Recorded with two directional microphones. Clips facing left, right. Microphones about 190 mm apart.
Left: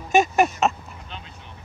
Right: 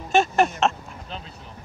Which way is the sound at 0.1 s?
10° left (ahead or behind).